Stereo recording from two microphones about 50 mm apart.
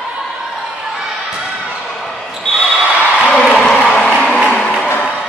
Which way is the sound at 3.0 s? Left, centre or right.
Left.